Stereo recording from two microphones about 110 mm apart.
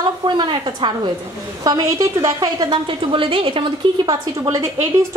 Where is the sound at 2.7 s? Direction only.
50° right (ahead or behind).